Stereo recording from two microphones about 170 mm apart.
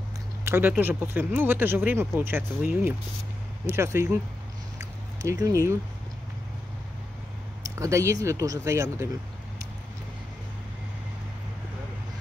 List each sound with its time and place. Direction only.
0.5 s speech: 10° right (ahead or behind)
4.7 s a sound: 15° right (ahead or behind)
7.6 s speech: 20° right (ahead or behind)